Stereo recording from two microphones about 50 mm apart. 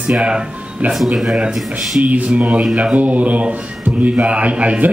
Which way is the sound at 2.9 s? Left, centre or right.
Right.